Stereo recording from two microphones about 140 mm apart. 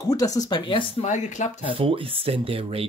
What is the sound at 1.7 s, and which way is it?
Speech, 40° right (ahead or behind).